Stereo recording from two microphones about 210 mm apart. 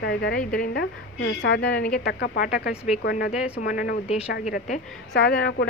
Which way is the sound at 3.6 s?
40° left (ahead or behind).